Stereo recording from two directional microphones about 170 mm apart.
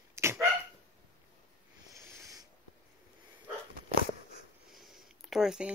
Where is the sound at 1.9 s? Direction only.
15° right (ahead or behind).